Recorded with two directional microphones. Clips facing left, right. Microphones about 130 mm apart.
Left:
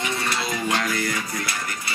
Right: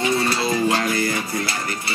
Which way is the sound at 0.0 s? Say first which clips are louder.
Right 6 dB; 30° right (ahead or behind).